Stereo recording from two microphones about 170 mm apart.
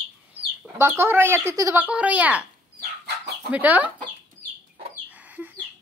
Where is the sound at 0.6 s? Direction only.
15° right (ahead or behind).